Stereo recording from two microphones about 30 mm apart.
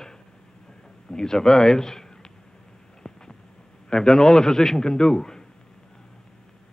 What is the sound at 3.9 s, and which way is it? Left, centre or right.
A man's voice, left.